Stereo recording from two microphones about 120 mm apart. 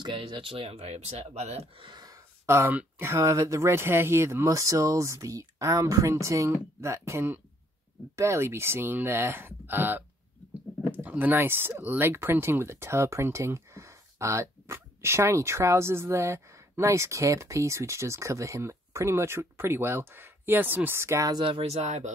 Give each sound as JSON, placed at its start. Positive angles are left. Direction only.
{"t": 0.0, "sound": "speech", "side_deg": -40}
{"t": 1.9, "sound": "speech", "side_deg": -35}
{"t": 21.6, "sound": "speech", "side_deg": -80}